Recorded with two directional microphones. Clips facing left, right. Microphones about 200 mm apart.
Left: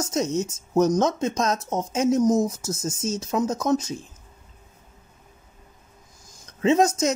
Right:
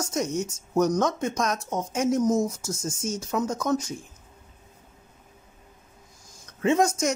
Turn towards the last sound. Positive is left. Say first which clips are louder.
# left 3 dB
turn(degrees=20)  # may be behind; listen again after turning